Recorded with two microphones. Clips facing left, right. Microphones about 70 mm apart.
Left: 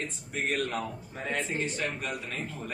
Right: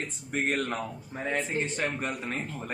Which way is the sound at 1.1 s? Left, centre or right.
Right.